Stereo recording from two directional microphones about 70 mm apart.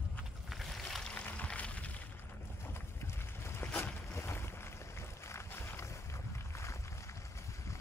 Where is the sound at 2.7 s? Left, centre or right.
Left.